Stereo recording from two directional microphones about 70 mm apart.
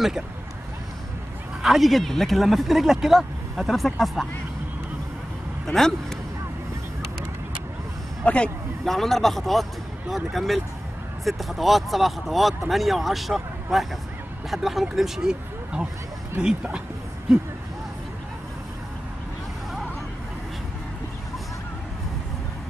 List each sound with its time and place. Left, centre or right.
1.6 s speech: centre
5.7 s speech: centre
8.2 s speech: centre
8.8 s speech: centre